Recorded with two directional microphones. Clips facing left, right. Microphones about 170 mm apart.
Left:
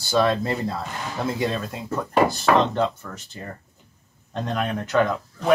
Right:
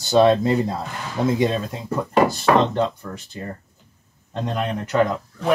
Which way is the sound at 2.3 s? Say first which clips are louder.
Right 2 dB; 5° left (ahead or behind).